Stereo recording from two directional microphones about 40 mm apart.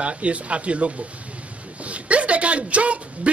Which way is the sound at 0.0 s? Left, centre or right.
Right.